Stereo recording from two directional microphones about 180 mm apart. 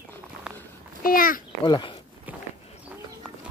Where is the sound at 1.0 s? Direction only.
50° left (ahead or behind).